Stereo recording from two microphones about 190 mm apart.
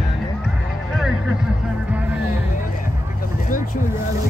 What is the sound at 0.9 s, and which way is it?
Music, 5° right (ahead or behind).